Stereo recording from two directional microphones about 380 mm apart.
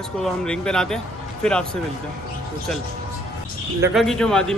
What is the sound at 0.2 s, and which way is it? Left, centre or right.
A man's voice, centre.